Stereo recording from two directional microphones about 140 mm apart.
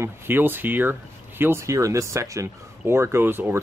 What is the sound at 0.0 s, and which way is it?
Speech, 15° right (ahead or behind).